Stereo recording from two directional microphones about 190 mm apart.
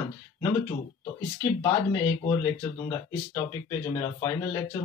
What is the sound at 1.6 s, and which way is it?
Speech, 15° left (ahead or behind).